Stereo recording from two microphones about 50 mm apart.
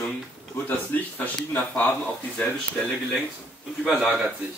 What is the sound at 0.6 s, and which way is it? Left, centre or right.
Speech, left.